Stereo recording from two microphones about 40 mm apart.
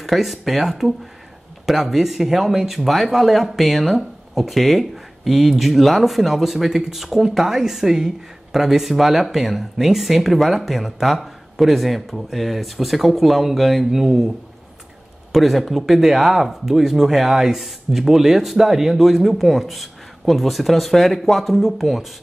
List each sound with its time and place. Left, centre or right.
0.0 s speech: centre
15.3 s speech: centre